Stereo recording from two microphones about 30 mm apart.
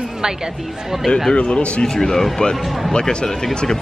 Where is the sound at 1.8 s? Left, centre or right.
Centre.